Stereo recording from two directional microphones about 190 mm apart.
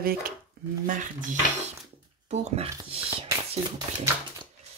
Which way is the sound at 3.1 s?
30° right (ahead or behind).